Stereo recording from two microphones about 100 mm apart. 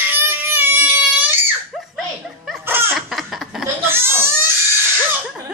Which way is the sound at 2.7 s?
25° right (ahead or behind).